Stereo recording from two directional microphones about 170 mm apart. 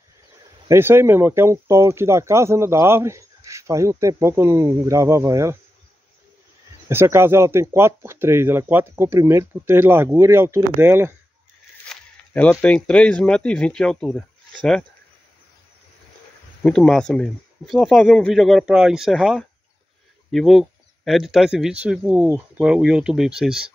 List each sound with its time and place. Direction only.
0.7 s speech: 15° right (ahead or behind)
6.9 s speech: 15° right (ahead or behind)
11.8 s speech: 5° left (ahead or behind)
16.6 s speech: 5° left (ahead or behind)